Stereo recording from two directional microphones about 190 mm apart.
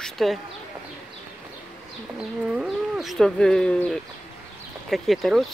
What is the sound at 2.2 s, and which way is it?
Speech, 5° right (ahead or behind).